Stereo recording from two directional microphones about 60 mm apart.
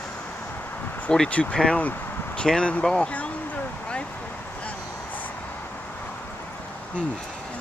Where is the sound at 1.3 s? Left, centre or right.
Left.